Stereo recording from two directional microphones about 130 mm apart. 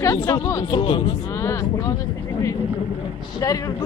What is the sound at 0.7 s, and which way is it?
Speech, 40° left (ahead or behind).